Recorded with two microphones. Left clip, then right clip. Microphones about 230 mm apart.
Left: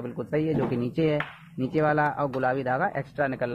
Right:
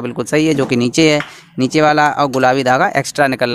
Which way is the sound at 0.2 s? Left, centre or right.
Right.